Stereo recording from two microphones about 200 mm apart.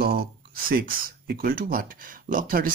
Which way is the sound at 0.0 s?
45° right (ahead or behind).